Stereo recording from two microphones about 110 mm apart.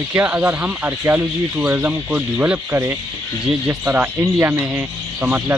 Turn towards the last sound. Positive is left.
turn(degrees=-15)  # may be behind; listen again after turning